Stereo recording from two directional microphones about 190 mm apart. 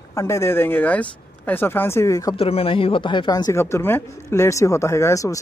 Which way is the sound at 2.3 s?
30° left (ahead or behind).